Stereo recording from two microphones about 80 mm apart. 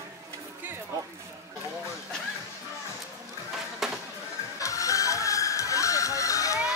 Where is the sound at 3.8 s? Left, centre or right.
Centre.